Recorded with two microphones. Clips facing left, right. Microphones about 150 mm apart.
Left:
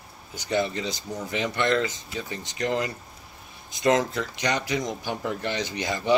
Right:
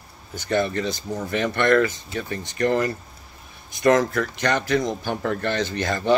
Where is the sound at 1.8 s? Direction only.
15° left (ahead or behind).